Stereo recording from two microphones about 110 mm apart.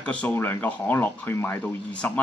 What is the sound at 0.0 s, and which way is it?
Speech, 10° left (ahead or behind).